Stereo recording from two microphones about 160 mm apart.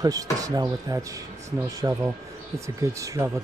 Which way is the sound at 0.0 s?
20° right (ahead or behind).